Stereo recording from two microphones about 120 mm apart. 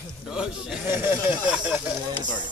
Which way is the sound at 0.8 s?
20° right (ahead or behind).